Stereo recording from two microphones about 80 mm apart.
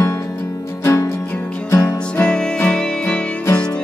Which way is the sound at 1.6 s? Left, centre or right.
Left.